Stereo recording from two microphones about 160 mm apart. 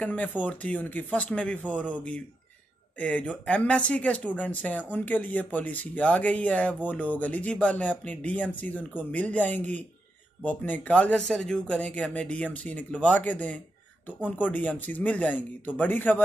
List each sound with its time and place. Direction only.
0.0 s speech: 10° left (ahead or behind)